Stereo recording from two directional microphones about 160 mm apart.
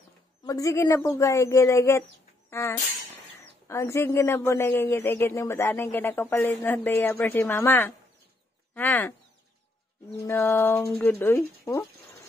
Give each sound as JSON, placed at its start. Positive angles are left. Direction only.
{"t": 0.5, "sound": "a woman's voice", "side_deg": 20}
{"t": 10.2, "sound": "speech", "side_deg": 15}